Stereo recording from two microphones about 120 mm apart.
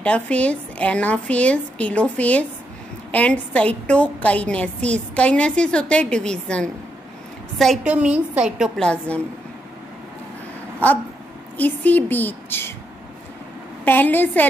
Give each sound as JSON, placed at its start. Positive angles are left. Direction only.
{"t": 0.0, "sound": "a woman's voice", "side_deg": 10}
{"t": 7.8, "sound": "a woman's voice", "side_deg": -10}
{"t": 8.8, "sound": "a woman's voice", "side_deg": 10}
{"t": 11.5, "sound": "a woman's voice", "side_deg": 15}
{"t": 13.8, "sound": "a woman's voice", "side_deg": 15}